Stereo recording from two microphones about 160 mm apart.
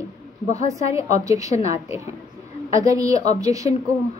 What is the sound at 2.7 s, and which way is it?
A woman's voice, 20° right (ahead or behind).